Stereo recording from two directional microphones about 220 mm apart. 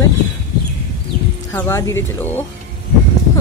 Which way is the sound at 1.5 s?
15° left (ahead or behind).